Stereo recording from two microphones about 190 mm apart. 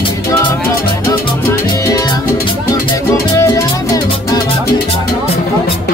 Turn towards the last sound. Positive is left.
turn(degrees=15)  # may be behind; listen again after turning